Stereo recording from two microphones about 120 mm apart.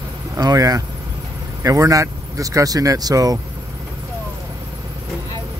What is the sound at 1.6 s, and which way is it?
Speech, 30° right (ahead or behind).